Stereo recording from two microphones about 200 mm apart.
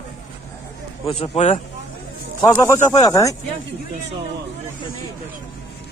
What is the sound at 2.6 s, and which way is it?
Speech, 15° left (ahead or behind).